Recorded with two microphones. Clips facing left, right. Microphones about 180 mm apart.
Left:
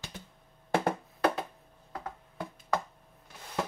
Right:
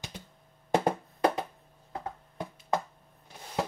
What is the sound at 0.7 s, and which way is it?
Music, 20° right (ahead or behind).